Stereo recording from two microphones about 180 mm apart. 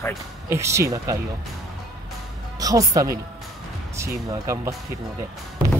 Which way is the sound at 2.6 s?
20° right (ahead or behind).